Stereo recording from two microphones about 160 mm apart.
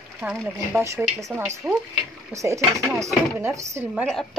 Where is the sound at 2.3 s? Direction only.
20° right (ahead or behind).